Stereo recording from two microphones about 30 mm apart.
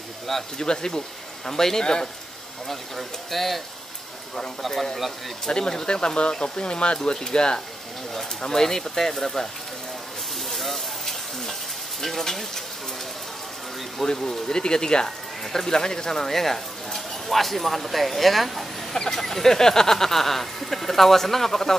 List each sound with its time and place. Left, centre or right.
0.6 s speech: left
2.7 s speech: centre
5.5 s speech: left
8.5 s speech: centre
10.5 s frying: centre
12.0 s speech: centre
14.1 s speech: centre
14.6 s speech: left
15.0 s speech: centre